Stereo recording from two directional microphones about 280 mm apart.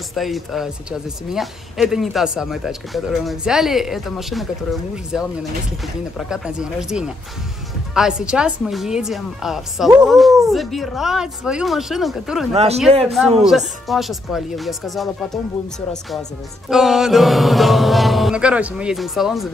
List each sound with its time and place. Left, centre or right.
0.1 s speech: centre
12.5 s a man's voice: right
13.0 s speech: centre